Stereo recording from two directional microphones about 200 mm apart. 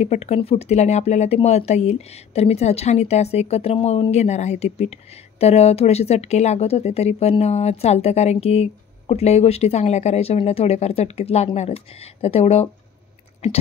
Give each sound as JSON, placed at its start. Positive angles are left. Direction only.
{"t": 0.0, "sound": "speech", "side_deg": 35}